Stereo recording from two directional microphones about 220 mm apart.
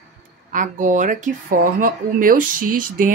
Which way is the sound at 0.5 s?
35° right (ahead or behind).